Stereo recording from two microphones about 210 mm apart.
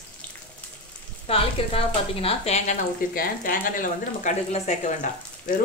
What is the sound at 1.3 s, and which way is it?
Speech, 25° left (ahead or behind).